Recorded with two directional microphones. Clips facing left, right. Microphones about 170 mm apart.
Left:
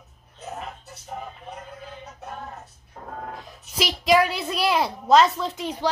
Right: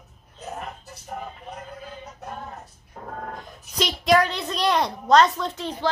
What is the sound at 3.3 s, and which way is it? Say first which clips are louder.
A woman's voice: right 1 dB; centre (ahead or behind).